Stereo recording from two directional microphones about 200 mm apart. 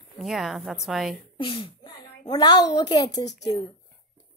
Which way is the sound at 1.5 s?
25° left (ahead or behind).